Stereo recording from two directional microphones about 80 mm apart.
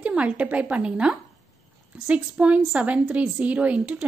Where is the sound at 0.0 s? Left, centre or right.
Centre.